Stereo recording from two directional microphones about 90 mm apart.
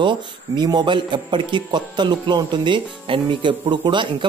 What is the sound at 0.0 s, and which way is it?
A man's voice, 60° right (ahead or behind).